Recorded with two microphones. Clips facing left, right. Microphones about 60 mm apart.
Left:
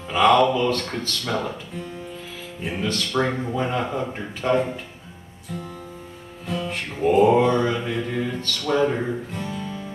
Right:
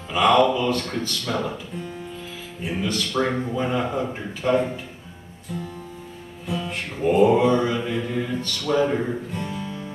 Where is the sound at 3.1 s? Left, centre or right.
Left.